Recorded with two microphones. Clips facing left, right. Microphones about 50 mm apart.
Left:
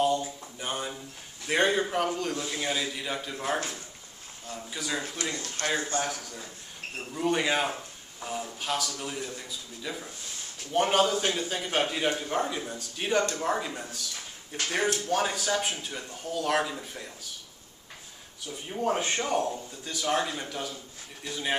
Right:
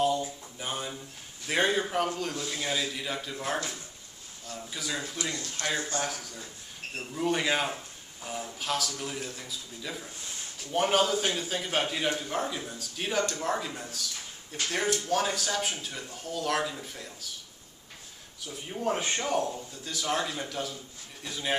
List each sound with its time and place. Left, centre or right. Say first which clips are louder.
0.0 s a sound: left 1 dB; centre
1.5 s a man's voice: left 2 dB; centre
3.5 s speech: left 2 dB; left
4.6 s a man's voice: left 1 dB; centre
5.2 s a man's voice: left 1 dB; left
7.2 s a man's voice: left 1 dB; centre
18.4 s a man's voice: left 2 dB; centre